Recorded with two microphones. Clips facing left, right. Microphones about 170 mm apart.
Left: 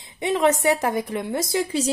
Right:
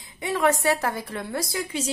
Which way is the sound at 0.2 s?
20° left (ahead or behind).